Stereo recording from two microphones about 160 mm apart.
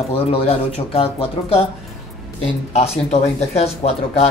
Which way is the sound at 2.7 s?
40° left (ahead or behind).